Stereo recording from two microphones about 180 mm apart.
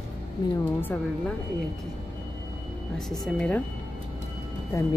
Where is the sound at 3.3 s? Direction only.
5° left (ahead or behind).